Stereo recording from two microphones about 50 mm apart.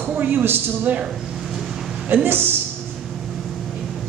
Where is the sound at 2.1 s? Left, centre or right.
Right.